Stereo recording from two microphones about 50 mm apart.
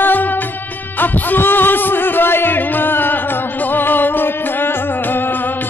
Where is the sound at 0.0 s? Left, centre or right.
Left.